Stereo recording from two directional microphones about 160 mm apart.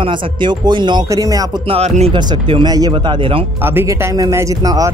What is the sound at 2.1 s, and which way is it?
A man's voice, 30° right (ahead or behind).